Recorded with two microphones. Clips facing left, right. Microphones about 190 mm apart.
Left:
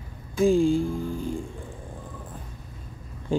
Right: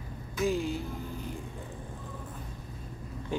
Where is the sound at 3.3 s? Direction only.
30° left (ahead or behind).